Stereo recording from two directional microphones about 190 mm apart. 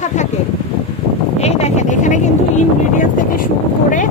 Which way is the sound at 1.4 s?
35° left (ahead or behind).